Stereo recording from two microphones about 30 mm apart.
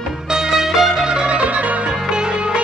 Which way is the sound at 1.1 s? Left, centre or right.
Right.